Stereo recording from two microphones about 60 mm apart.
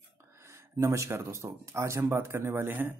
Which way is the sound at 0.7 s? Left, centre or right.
Right.